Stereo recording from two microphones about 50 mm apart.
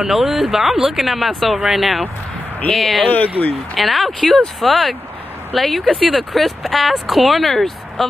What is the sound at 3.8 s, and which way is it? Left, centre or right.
Speech, centre.